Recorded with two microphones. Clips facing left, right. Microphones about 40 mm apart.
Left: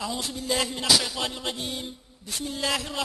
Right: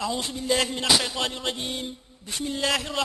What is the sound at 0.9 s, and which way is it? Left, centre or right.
A man's voice, centre.